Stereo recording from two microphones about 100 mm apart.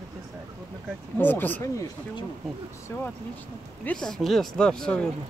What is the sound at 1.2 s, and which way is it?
Speech, 20° left (ahead or behind).